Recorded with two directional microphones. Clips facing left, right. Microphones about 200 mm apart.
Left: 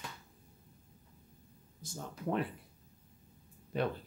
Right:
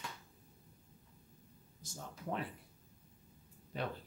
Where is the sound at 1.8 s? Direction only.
60° left (ahead or behind).